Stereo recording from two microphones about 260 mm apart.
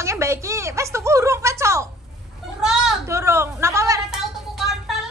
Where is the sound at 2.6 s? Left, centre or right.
Centre.